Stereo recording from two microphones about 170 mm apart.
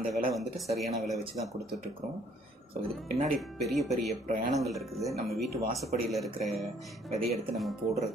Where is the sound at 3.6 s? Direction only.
Centre (ahead or behind).